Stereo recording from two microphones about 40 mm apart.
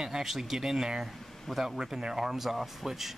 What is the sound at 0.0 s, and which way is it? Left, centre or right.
Speech, centre.